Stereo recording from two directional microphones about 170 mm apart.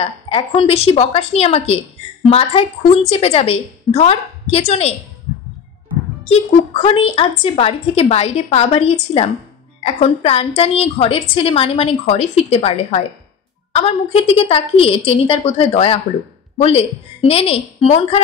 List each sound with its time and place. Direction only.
0.0 s a woman's voice: 30° left (ahead or behind)
6.2 s a woman's voice: 40° left (ahead or behind)